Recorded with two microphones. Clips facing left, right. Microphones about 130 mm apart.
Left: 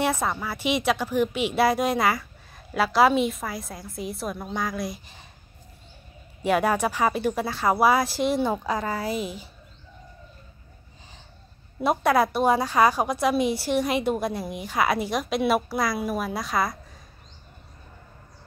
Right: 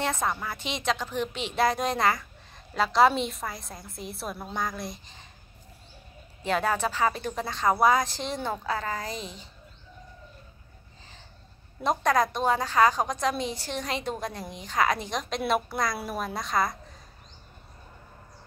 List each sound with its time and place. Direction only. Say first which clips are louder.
0.0 s a woman's voice: left 3 dB; 5° left (ahead or behind)
6.4 s a woman's voice: left 4 dB; 10° left (ahead or behind)
11.8 s a woman's voice: left 3 dB; 10° left (ahead or behind)